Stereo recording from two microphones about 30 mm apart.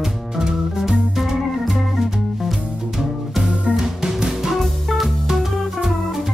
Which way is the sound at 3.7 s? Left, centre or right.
Centre.